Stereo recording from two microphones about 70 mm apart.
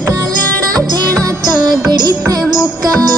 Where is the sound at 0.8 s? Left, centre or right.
Right.